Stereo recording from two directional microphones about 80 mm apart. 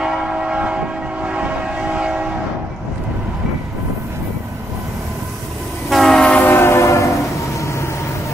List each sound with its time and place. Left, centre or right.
0.0 s train: centre
5.9 s train: centre
6.5 s train: left